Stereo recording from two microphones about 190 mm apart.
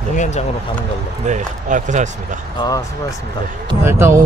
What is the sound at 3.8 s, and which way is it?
Speech, 15° right (ahead or behind).